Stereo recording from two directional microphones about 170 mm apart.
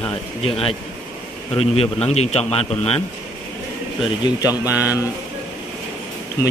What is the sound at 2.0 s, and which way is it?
A man's voice, 40° left (ahead or behind).